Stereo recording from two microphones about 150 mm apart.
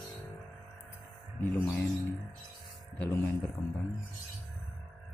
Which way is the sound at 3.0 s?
15° left (ahead or behind).